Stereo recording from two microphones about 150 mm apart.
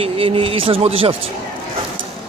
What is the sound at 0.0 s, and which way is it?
Speech, 35° right (ahead or behind).